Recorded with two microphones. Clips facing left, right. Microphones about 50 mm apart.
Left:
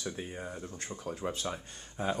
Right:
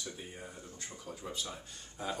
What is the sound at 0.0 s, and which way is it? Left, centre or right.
Speech, left.